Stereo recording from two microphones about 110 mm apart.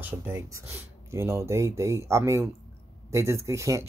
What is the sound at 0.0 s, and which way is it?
Speech, 20° right (ahead or behind).